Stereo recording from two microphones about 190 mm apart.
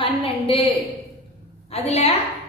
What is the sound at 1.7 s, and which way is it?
Speech, 30° left (ahead or behind).